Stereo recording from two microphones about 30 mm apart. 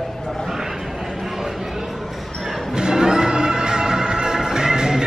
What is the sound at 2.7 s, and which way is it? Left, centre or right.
Music, right.